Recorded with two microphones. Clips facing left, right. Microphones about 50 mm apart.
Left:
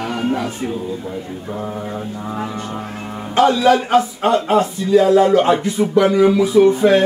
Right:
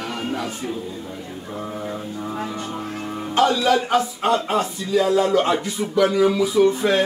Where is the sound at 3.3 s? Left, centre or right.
Centre.